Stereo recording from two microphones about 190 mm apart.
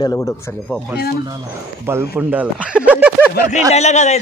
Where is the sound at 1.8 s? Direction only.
10° right (ahead or behind).